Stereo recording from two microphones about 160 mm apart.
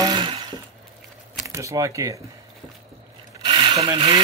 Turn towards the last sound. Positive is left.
turn(degrees=-35)  # may be behind; listen again after turning